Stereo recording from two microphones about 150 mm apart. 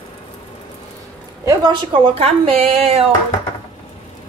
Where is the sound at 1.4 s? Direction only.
25° right (ahead or behind); by 3.0 s 40° right (ahead or behind).